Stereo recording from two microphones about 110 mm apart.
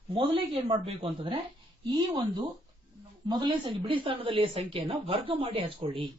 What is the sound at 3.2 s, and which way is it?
A woman's voice, 45° right (ahead or behind).